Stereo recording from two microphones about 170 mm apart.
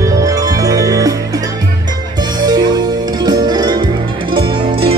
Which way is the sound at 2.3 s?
25° right (ahead or behind).